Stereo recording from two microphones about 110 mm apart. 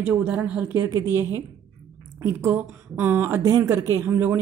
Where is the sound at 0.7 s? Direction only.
30° right (ahead or behind).